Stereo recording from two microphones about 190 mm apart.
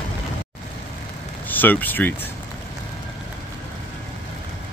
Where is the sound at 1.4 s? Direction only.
10° left (ahead or behind).